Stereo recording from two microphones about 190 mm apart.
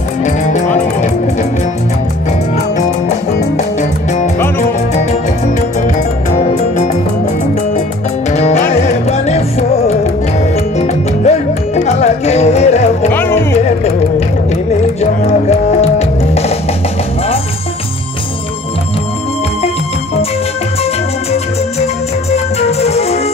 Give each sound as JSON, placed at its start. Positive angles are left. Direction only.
{"t": 0.2, "sound": "music", "side_deg": 40}
{"t": 6.3, "sound": "music", "side_deg": 40}
{"t": 8.3, "sound": "music", "side_deg": 35}
{"t": 15.8, "sound": "music", "side_deg": 35}
{"t": 22.3, "sound": "music", "side_deg": 35}